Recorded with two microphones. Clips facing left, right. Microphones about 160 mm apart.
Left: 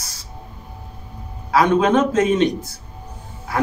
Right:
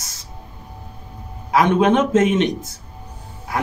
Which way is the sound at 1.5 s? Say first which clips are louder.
Even; 20° right (ahead or behind).